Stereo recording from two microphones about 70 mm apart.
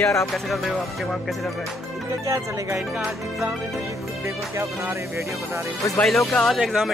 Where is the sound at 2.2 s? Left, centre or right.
Right.